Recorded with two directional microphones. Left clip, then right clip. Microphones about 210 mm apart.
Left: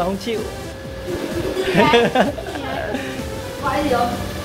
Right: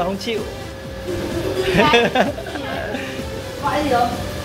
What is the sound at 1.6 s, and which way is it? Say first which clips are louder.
Speech: even; 15° left (ahead or behind).